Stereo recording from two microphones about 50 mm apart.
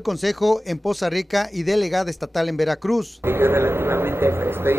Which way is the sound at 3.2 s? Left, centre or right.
Right.